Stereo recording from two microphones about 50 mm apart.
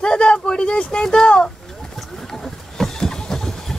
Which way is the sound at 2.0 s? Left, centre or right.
Centre.